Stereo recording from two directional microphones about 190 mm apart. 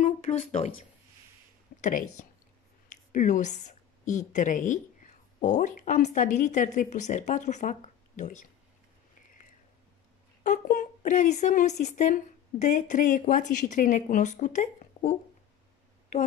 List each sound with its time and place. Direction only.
0.0 s a sound: 35° left (ahead or behind)
1.8 s speech: 40° left (ahead or behind)
3.1 s a woman's voice: 40° left (ahead or behind)
10.4 s a woman's voice: 45° left (ahead or behind)